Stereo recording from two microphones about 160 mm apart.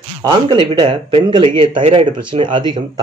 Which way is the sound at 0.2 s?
30° right (ahead or behind).